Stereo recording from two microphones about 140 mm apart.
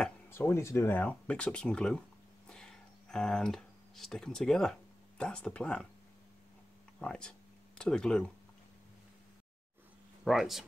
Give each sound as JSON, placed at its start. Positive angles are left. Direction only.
{"t": 0.3, "sound": "speech", "side_deg": 15}
{"t": 7.0, "sound": "speech", "side_deg": 5}
{"t": 10.2, "sound": "speech", "side_deg": 0}